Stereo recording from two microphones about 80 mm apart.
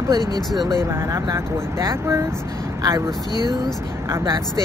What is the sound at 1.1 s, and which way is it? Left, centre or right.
Speech, right.